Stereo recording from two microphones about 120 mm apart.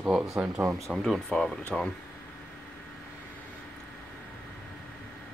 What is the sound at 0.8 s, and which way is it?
Speech, centre (ahead or behind).